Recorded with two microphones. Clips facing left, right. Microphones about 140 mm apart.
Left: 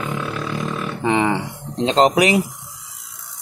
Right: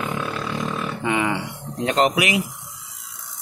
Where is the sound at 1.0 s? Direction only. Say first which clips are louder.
Left 5 dB; 25° left (ahead or behind).